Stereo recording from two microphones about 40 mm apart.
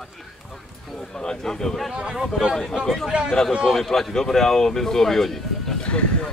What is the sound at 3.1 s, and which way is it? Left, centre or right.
Speech, right.